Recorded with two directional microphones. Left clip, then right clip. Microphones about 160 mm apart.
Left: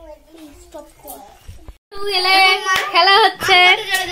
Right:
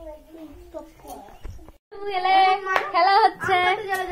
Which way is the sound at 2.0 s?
75° left (ahead or behind).